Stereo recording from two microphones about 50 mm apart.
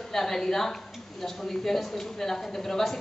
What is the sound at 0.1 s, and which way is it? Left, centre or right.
A woman's voice, centre.